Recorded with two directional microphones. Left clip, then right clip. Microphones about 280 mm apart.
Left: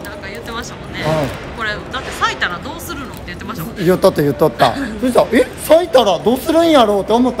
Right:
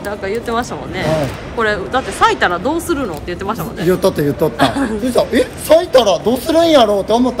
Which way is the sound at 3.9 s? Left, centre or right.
Left.